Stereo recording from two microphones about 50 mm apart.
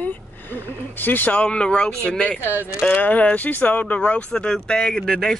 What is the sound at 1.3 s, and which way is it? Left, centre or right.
Speech, left.